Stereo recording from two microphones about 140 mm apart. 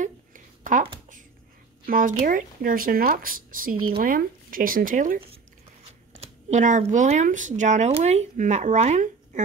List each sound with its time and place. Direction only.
0.0 s a sound: 65° right (ahead or behind)
1.9 s speech: 80° right
6.1 s speech: 60° right (ahead or behind)